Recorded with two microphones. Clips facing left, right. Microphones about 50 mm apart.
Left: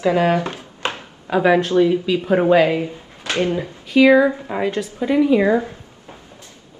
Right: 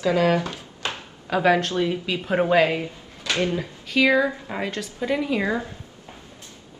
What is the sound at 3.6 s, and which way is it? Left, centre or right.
Speech, centre.